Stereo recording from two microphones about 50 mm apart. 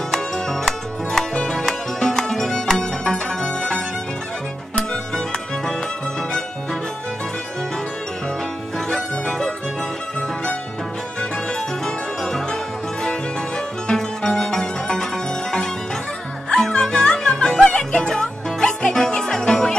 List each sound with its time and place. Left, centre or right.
0.1 s music: centre
8.7 s music: centre
11.8 s zither: centre
13.8 s music: centre
16.4 s music: centre